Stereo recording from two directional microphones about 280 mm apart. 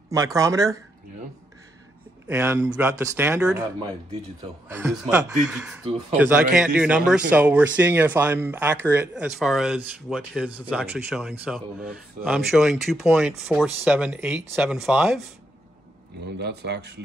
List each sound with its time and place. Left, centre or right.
0.1 s speech: centre
2.2 s speech: centre
4.6 s a man's voice: centre
16.3 s speech: right